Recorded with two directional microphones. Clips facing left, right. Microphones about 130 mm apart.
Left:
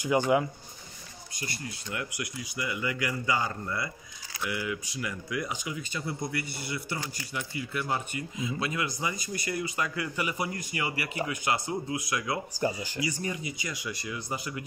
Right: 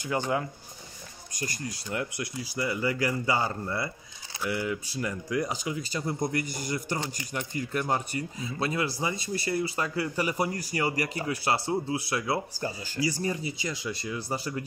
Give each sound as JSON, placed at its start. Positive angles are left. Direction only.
{"t": 0.1, "sound": "speech", "side_deg": 15}
{"t": 1.3, "sound": "speech", "side_deg": -45}
{"t": 12.6, "sound": "speech", "side_deg": 15}
{"t": 13.0, "sound": "speech", "side_deg": -35}